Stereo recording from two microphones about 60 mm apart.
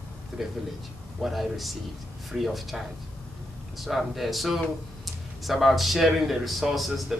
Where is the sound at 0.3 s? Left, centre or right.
Centre.